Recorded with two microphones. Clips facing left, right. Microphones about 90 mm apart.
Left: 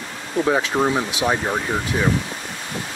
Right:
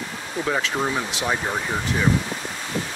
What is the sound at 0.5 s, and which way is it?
Speech, 20° left (ahead or behind).